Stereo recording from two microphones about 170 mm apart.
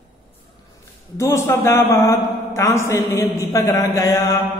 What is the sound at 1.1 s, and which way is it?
A man's voice, 15° left (ahead or behind).